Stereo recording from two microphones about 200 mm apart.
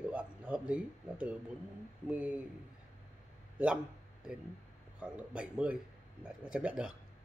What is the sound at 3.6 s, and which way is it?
Speech, 5° right (ahead or behind).